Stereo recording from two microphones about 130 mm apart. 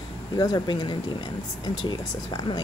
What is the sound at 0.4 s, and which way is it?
Speech, 30° left (ahead or behind).